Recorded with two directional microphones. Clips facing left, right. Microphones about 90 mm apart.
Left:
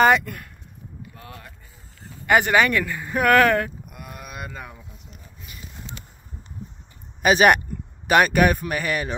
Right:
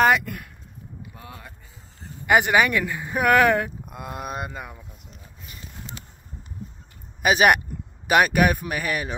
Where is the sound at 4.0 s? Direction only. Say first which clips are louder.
Right 6 dB; 35° right (ahead or behind).